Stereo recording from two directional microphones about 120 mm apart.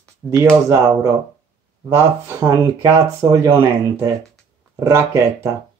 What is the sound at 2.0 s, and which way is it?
Speech, 20° right (ahead or behind).